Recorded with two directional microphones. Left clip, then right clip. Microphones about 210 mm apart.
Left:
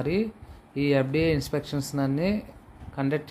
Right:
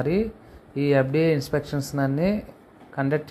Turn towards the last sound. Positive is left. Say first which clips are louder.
# right 3 dB
turn(degrees=0)  # may be behind; listen again after turning